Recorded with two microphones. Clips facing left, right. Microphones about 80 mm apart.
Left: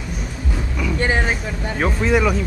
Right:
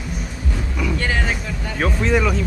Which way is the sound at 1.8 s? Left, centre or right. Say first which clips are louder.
Left 1 dB; centre.